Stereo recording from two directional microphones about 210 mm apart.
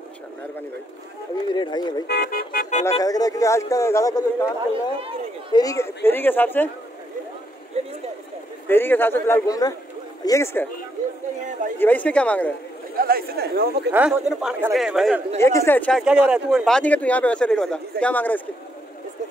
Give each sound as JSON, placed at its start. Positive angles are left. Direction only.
{"t": 1.5, "sound": "speech", "side_deg": 20}
{"t": 2.0, "sound": "speech", "side_deg": 45}
{"t": 3.0, "sound": "speech", "side_deg": 15}
{"t": 7.8, "sound": "a sound", "side_deg": -30}
{"t": 8.6, "sound": "speech", "side_deg": 10}
{"t": 11.8, "sound": "speech", "side_deg": 5}
{"t": 12.9, "sound": "speech", "side_deg": -45}
{"t": 13.9, "sound": "speech", "side_deg": -5}
{"t": 15.3, "sound": "speech", "side_deg": 10}